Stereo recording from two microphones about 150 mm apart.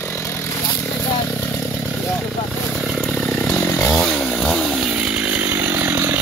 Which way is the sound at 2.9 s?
5° left (ahead or behind).